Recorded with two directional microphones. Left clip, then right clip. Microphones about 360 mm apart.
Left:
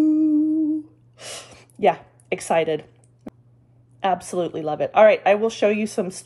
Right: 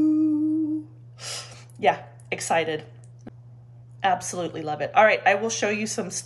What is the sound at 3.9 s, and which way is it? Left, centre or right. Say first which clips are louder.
Speech: left 2 dB; centre.